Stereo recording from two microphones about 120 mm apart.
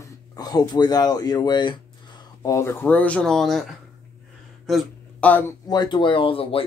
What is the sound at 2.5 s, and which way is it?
Speech, 20° left (ahead or behind).